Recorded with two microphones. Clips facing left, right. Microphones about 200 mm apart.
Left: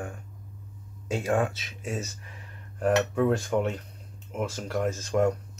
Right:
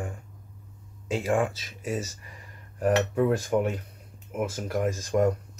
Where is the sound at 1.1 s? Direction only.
Centre (ahead or behind).